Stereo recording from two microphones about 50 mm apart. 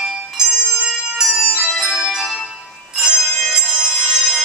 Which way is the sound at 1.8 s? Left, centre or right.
Centre.